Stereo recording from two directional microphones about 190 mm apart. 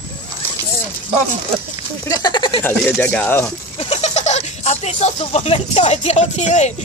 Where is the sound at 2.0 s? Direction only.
20° left (ahead or behind).